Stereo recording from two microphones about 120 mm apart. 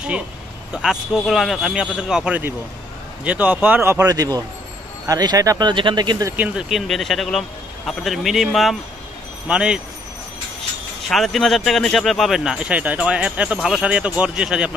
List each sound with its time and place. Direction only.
0.8 s a man's voice: centre (ahead or behind); by 6.2 s 35° right (ahead or behind)
6.2 s speech: 15° right (ahead or behind)
6.7 s a man's voice: centre (ahead or behind)
11.1 s speech: centre (ahead or behind)